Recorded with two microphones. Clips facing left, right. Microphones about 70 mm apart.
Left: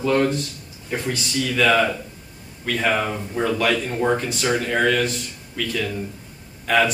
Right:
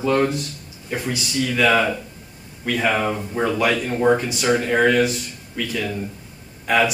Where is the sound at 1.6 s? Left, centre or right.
Centre.